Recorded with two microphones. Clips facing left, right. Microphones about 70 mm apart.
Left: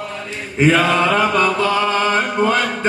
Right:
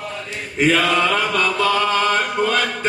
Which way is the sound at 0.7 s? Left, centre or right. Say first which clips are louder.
Left 2 dB; left.